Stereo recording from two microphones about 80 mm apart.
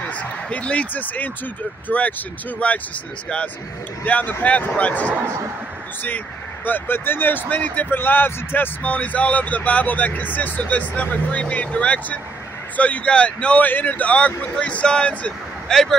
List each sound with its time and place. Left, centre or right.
0.0 s speech: centre
4.0 s speech: left